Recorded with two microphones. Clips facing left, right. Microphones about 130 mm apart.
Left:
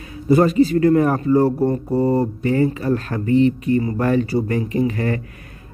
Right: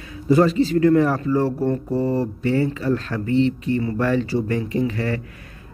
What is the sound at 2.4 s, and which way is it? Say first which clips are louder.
Speech: even; 40° left (ahead or behind).